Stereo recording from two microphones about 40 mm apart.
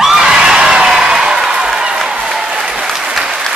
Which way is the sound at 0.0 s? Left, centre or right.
Centre.